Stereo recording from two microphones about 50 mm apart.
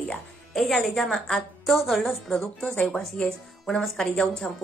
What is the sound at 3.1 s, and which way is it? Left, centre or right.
Speech, centre.